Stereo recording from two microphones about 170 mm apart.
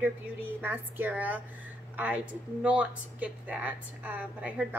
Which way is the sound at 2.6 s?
5° right (ahead or behind).